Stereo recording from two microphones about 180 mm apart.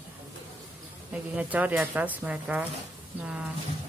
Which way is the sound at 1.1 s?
10° right (ahead or behind).